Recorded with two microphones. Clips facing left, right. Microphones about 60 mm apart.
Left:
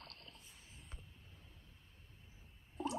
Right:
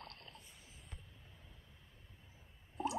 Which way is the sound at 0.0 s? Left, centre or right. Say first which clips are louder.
Right 3 dB; right.